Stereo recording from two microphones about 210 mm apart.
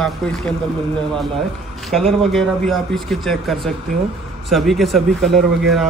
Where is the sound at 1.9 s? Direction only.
Centre (ahead or behind).